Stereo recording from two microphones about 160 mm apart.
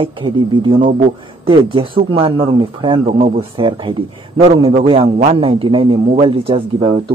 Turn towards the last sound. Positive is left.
turn(degrees=-30)  # may be behind; listen again after turning